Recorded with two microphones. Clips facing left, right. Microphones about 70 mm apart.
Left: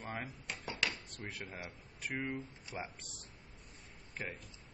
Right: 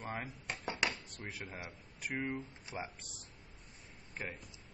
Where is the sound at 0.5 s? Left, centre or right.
Right.